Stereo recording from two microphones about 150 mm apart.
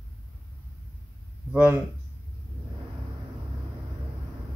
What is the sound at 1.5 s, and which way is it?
Speech, 10° right (ahead or behind).